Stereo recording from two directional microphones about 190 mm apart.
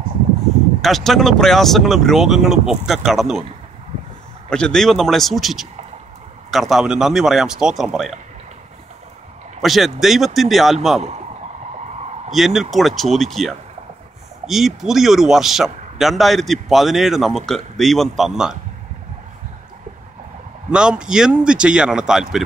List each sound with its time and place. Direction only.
0.8 s speech: centre (ahead or behind)
4.5 s speech: 5° left (ahead or behind)
9.6 s speech: centre (ahead or behind)
11.0 s a man's voice: 35° right (ahead or behind)
12.3 s speech: centre (ahead or behind)
20.7 s speech: 5° right (ahead or behind)